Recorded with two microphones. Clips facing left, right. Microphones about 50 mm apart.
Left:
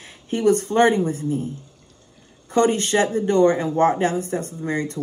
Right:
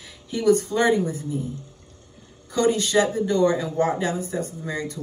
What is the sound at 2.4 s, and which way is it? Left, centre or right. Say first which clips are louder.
Speech: left 3 dB; left.